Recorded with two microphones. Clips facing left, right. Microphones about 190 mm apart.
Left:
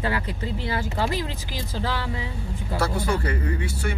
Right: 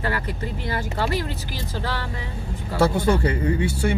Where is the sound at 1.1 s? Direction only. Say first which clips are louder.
Right 2 dB; 90° left.